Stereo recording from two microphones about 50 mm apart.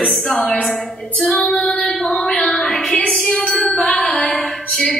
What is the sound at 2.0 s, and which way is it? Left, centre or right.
Music, centre.